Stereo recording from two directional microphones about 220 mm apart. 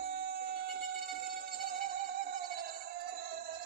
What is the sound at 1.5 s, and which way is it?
Music, 45° right (ahead or behind).